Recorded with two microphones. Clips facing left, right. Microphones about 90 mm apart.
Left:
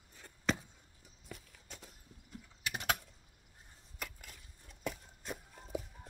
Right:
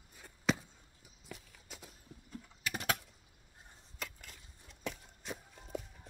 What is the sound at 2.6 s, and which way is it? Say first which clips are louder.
Typing: right 1 dB; 35° right (ahead or behind).